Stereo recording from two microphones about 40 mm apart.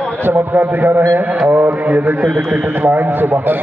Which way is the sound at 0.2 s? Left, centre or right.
Right.